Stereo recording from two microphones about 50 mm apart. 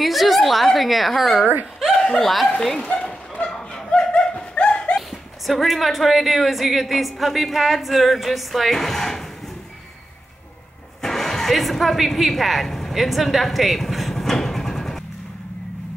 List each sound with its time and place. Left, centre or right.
0.0 s a woman's voice: centre
2.0 s speech: centre
3.0 s bow-wow: left
3.4 s a sound: centre
5.5 s a woman's voice: centre
11.0 s a sound: centre